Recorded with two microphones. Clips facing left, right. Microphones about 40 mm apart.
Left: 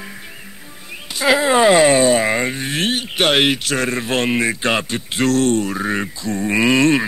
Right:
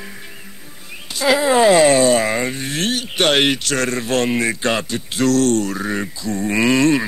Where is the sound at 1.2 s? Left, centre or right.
Left.